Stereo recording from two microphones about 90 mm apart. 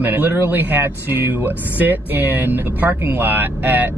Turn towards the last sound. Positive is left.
turn(degrees=-20)  # may be behind; listen again after turning